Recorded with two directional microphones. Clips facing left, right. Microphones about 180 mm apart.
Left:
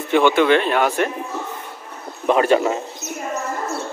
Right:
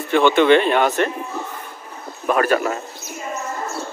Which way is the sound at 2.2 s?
20° left (ahead or behind).